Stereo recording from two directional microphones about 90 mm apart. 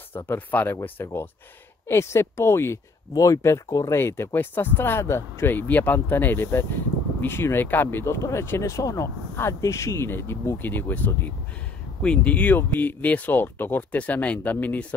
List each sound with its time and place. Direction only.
0.3 s speech: 20° left (ahead or behind)